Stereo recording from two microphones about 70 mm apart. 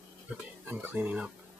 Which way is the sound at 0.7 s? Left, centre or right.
Right.